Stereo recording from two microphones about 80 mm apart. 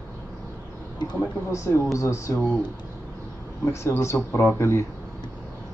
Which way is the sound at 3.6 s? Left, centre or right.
Left.